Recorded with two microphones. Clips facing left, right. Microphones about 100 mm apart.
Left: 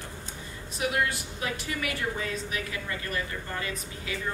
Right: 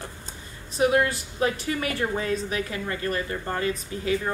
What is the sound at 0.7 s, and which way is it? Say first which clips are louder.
A woman's voice: right 7 dB; 35° right (ahead or behind).